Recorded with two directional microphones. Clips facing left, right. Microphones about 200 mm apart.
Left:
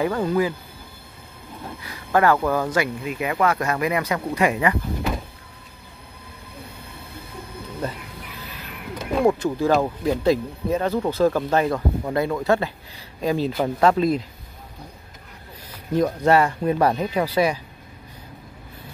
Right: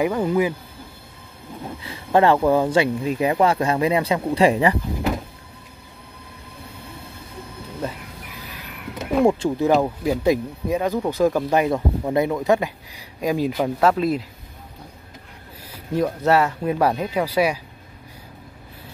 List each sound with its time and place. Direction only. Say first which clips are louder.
0.0 s speech: right 1 dB; 15° right (ahead or behind)
1.8 s speech: right 2 dB; 25° right (ahead or behind)
9.2 s speech: right 1 dB; 20° right (ahead or behind)
9.8 s speech: even; 5° right (ahead or behind)
15.7 s speech: left 1 dB; 10° right (ahead or behind)